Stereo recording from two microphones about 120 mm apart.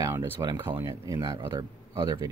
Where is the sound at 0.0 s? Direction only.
25° right (ahead or behind).